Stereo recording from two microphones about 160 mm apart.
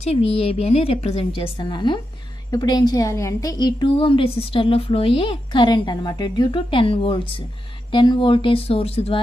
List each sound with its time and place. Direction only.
0.0 s a woman's voice: 40° left (ahead or behind)